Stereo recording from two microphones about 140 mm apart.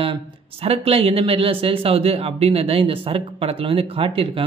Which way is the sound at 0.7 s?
45° right (ahead or behind).